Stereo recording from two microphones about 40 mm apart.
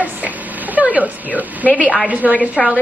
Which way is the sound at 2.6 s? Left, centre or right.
Centre.